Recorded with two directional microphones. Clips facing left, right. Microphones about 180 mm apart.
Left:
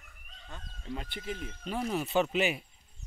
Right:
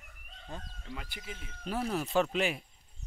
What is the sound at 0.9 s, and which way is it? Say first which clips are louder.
Speech: left 6 dB; 30° left (ahead or behind).